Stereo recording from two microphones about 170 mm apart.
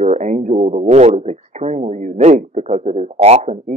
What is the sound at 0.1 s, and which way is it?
Speech, 40° right (ahead or behind).